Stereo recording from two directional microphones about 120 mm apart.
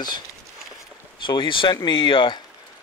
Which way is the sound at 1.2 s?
45° left (ahead or behind).